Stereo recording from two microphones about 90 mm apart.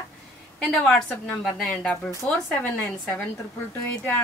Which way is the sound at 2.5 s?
15° left (ahead or behind).